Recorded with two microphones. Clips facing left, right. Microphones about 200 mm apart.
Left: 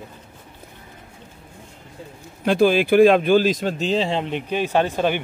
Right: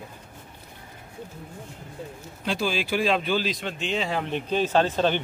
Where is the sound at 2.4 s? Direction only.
55° left (ahead or behind); by 5.2 s 10° left (ahead or behind).